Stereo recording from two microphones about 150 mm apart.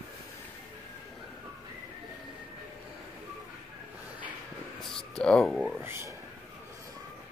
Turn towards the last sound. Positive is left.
turn(degrees=-15)  # may be behind; listen again after turning